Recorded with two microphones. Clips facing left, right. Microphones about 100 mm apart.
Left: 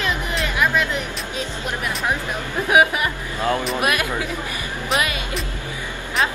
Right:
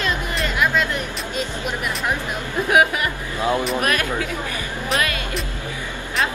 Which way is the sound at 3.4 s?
15° right (ahead or behind).